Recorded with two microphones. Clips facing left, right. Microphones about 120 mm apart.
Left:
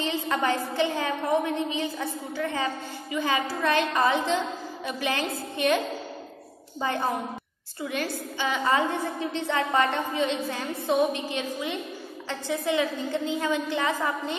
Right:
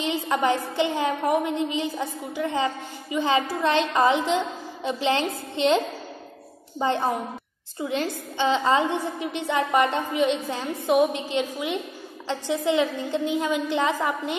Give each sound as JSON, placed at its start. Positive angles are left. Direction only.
{"t": 0.0, "sound": "a woman's voice", "side_deg": -15}
{"t": 6.8, "sound": "a woman's voice", "side_deg": -25}